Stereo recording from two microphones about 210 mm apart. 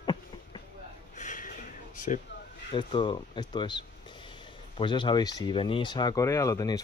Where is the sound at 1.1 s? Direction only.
35° left (ahead or behind).